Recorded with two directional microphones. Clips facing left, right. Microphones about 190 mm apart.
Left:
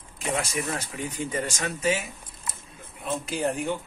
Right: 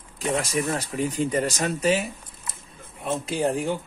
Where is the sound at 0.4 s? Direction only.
35° right (ahead or behind).